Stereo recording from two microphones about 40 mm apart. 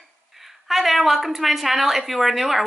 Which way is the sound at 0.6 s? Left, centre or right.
Centre.